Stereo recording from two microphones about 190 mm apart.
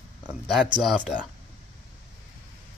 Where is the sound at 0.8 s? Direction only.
Centre (ahead or behind).